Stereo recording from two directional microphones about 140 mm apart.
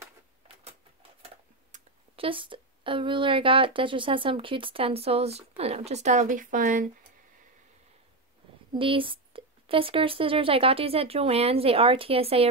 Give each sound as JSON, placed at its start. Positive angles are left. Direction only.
{"t": 1.7, "sound": "a sound", "side_deg": -65}
{"t": 2.1, "sound": "speech", "side_deg": -40}
{"t": 8.7, "sound": "speech", "side_deg": -40}